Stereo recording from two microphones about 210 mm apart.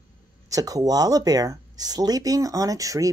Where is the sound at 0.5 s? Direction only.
15° right (ahead or behind).